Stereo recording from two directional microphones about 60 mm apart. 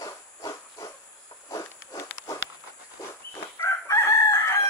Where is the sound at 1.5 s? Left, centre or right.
Left.